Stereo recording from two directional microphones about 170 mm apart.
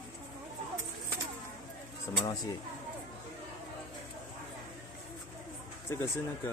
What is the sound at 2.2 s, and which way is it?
Speech, 25° left (ahead or behind).